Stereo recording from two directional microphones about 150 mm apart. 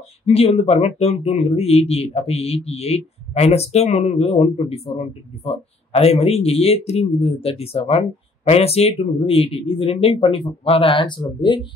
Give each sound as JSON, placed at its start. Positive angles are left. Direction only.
{"t": 0.3, "sound": "speech", "side_deg": 40}